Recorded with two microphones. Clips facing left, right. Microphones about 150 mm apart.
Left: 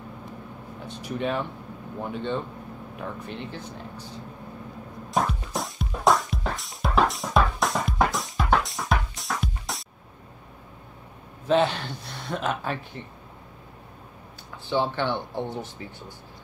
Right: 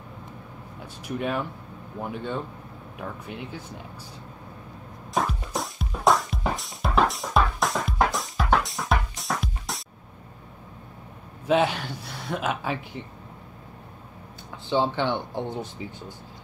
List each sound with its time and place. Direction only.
0.8 s speech: 5° right (ahead or behind)
3.0 s speech: 5° right (ahead or behind)
5.1 s music: centre (ahead or behind)
11.4 s speech: 10° right (ahead or behind)
14.7 s speech: 15° right (ahead or behind)